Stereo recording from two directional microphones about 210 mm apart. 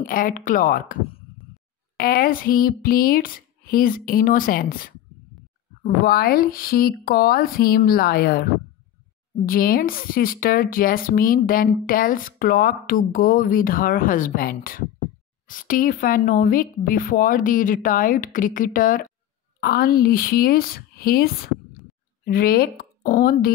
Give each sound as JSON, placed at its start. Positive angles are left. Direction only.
{"t": 0.0, "sound": "a woman's voice", "side_deg": 40}
{"t": 2.0, "sound": "speech", "side_deg": 45}
{"t": 6.0, "sound": "speech", "side_deg": 45}
{"t": 9.5, "sound": "a woman's voice", "side_deg": 45}